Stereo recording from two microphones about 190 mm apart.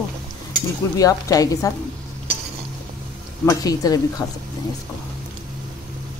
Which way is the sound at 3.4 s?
20° left (ahead or behind).